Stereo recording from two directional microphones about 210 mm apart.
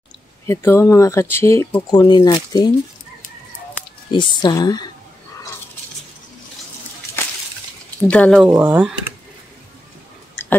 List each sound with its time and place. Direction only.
0.5 s speech: 10° left (ahead or behind)
4.1 s speech: 20° left (ahead or behind)
7.2 s a sound: 10° left (ahead or behind)
8.1 s speech: 5° left (ahead or behind)
8.5 s speech: 10° right (ahead or behind)